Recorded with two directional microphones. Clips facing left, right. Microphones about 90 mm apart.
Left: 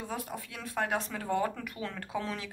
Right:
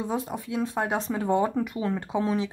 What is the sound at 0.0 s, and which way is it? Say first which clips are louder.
A woman's voice: right 8 dB; 20° right (ahead or behind).